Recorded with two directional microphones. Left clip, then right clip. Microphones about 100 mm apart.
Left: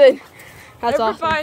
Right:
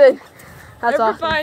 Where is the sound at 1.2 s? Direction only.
20° right (ahead or behind).